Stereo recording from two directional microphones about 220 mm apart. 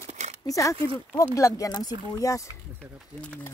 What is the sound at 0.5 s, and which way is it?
A woman's voice, 15° left (ahead or behind).